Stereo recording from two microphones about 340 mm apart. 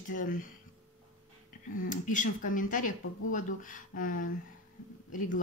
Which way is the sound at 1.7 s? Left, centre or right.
Left.